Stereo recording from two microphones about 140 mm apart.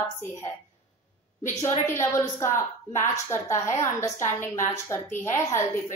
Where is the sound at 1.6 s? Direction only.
20° left (ahead or behind).